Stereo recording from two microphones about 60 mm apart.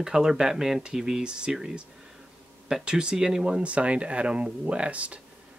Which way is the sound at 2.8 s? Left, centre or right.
Centre.